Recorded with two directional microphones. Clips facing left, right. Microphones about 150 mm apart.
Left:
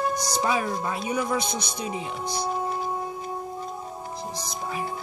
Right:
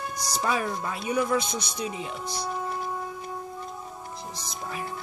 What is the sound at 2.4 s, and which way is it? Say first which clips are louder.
Music: left 4 dB; 25° left (ahead or behind).